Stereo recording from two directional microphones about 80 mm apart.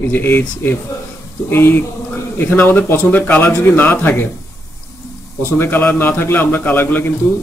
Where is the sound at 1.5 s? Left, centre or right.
Left.